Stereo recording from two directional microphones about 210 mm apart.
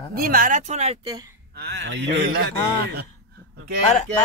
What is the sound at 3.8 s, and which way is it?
Speech, 35° left (ahead or behind).